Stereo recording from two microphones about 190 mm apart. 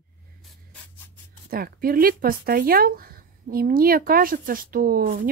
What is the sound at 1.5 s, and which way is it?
Speech, 50° right (ahead or behind).